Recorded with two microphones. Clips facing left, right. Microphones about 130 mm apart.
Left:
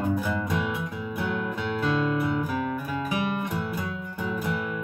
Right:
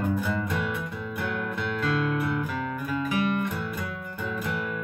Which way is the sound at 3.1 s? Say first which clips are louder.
Right 2 dB; 15° left (ahead or behind).